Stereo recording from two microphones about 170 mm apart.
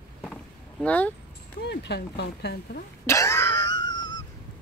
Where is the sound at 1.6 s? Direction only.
85° left.